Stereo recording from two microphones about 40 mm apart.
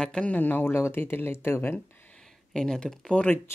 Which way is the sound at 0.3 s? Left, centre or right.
Left.